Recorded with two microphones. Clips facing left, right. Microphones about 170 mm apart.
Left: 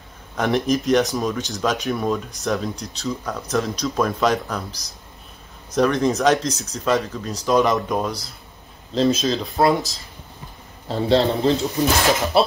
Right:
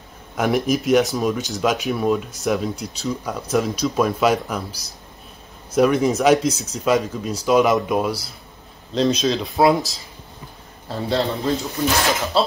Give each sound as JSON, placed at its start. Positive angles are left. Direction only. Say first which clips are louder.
{"t": 0.4, "sound": "speech", "louder": "right 1 dB", "side_deg": -5}
{"t": 5.8, "sound": "speech", "louder": "right 2 dB", "side_deg": -5}
{"t": 11.1, "sound": "a man's voice", "louder": "left 4 dB", "side_deg": 20}